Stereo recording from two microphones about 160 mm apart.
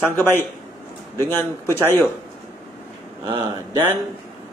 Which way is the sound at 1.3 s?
15° left (ahead or behind).